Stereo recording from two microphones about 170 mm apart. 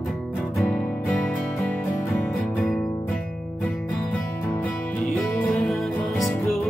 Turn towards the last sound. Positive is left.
turn(degrees=0)  # may be behind; listen again after turning